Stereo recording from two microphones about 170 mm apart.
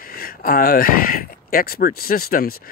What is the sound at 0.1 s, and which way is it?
Speech, 60° left (ahead or behind).